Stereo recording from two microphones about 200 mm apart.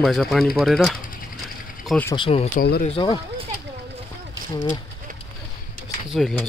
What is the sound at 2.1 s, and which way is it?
Speech, 30° left (ahead or behind).